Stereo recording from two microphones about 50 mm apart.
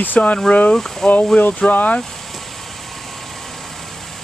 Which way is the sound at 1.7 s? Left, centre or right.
Left.